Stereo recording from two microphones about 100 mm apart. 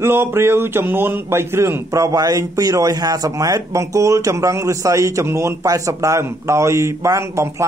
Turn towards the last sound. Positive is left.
turn(degrees=-30)  # may be behind; listen again after turning